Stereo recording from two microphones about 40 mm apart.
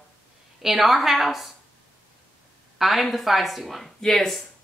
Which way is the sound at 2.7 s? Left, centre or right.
Centre.